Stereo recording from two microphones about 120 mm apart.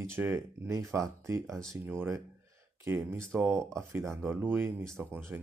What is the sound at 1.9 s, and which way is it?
Speech, 20° right (ahead or behind).